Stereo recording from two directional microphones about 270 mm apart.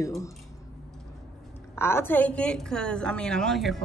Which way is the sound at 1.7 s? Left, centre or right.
Centre.